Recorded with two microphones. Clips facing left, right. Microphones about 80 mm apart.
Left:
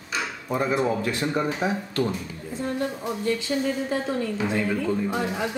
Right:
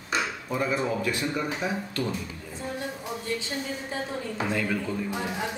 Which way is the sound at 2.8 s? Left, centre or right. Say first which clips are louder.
Left 6 dB; left.